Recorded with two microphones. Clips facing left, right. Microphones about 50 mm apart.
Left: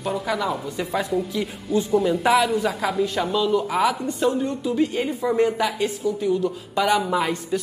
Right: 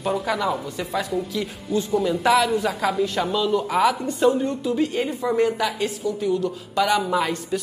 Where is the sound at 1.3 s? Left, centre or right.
Centre.